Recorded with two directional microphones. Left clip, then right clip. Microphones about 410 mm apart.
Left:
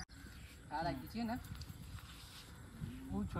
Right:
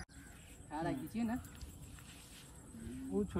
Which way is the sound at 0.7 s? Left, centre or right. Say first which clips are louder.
Even; centre.